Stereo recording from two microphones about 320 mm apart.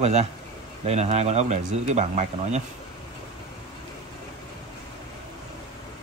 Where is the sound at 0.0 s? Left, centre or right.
Centre.